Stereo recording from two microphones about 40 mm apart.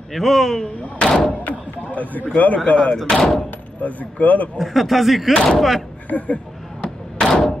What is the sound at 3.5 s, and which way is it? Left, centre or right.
Speech, left.